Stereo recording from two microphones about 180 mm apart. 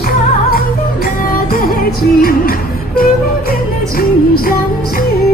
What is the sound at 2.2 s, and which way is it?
Music, 55° left (ahead or behind).